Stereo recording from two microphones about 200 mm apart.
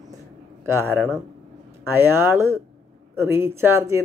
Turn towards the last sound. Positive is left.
turn(degrees=-10)  # may be behind; listen again after turning